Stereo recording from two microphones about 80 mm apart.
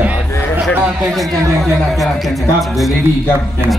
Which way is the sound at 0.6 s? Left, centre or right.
Centre.